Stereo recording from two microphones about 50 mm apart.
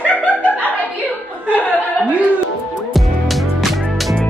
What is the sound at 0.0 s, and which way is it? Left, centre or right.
Chuckle, left.